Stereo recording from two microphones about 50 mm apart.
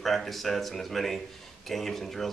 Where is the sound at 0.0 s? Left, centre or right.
Centre.